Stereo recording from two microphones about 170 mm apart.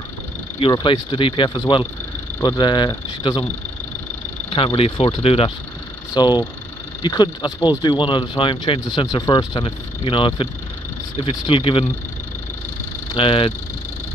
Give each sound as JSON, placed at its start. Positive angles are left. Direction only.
{"t": 0.6, "sound": "speech", "side_deg": 30}
{"t": 4.7, "sound": "speech", "side_deg": 35}
{"t": 13.1, "sound": "speech", "side_deg": 30}